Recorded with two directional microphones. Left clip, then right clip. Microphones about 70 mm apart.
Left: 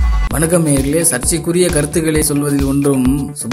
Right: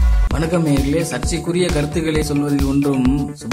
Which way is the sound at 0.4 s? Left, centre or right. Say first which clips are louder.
Left 4 dB; left.